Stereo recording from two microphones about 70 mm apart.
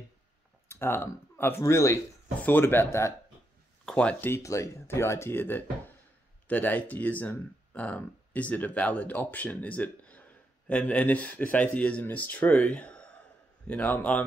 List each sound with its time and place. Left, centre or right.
0.7 s speech: left
2.4 s speech: left
3.8 s speech: centre
4.4 s speech: left
4.8 s speech: left